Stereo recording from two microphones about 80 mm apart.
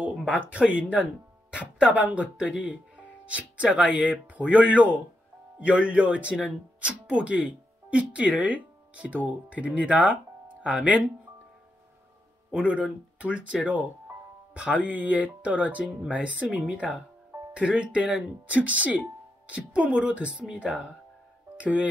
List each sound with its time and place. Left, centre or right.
0.3 s speech: centre
12.6 s speech: centre